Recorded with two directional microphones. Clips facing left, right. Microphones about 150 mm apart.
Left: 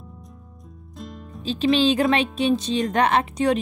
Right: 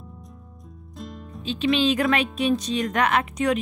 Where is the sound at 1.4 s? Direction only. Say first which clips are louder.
Left 2 dB; 35° left (ahead or behind).